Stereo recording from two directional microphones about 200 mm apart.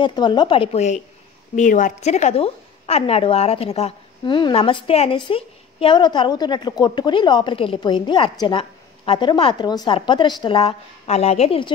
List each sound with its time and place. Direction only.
0.0 s a woman's voice: 20° left (ahead or behind)